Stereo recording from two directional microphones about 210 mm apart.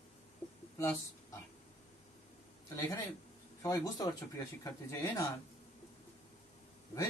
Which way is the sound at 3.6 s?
15° left (ahead or behind).